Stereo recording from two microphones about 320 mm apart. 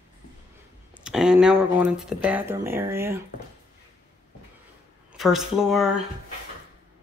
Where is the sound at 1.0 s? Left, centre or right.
Centre.